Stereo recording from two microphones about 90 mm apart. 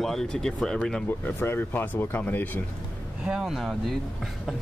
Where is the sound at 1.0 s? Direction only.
25° left (ahead or behind).